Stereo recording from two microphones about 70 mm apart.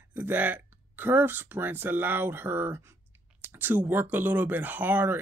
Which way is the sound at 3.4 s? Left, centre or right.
Right.